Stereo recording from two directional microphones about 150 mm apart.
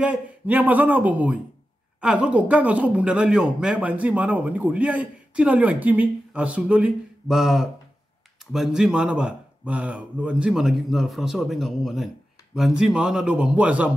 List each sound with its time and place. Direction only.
0.0 s speech: 10° right (ahead or behind)